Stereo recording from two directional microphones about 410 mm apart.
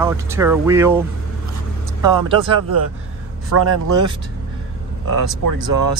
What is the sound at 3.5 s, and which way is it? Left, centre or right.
Speech, right.